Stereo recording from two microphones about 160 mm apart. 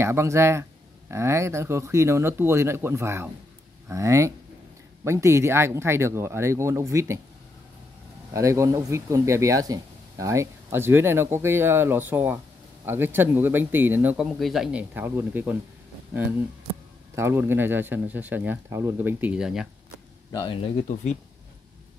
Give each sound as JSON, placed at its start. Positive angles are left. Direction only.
{"t": 0.0, "sound": "speech", "side_deg": -15}
{"t": 8.3, "sound": "speech", "side_deg": -20}
{"t": 17.1, "sound": "speech", "side_deg": -15}
{"t": 20.2, "sound": "speech", "side_deg": 30}